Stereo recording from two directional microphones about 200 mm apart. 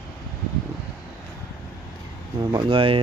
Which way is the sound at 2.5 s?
25° right (ahead or behind).